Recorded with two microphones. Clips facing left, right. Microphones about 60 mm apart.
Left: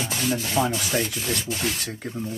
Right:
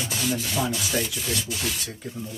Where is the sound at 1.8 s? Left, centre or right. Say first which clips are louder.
Left 3 dB; left.